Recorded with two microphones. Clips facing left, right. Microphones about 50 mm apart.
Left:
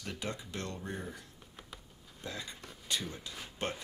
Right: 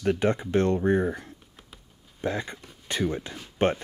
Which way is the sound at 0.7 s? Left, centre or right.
Right.